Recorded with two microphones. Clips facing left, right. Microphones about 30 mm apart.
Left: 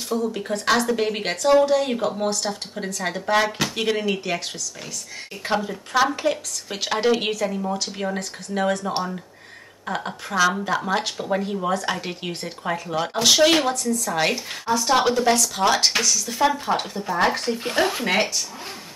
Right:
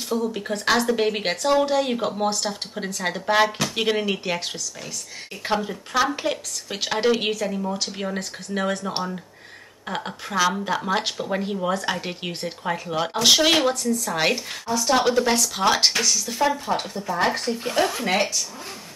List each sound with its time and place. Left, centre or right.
0.1 s speech: centre
3.4 s speech: centre
3.7 s speech: centre
5.4 s speech: centre
14.7 s speech: centre
16.4 s speech: centre